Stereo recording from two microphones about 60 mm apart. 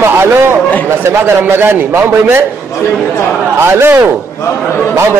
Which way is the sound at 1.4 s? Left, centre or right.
Right.